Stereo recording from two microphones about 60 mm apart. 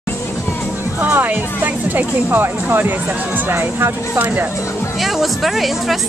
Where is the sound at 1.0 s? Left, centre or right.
Right.